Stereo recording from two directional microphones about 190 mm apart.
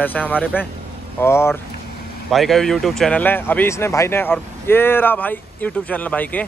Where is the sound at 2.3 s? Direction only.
Centre (ahead or behind).